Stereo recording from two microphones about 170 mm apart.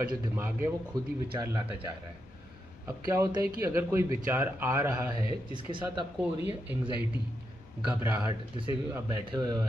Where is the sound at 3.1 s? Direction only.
15° right (ahead or behind).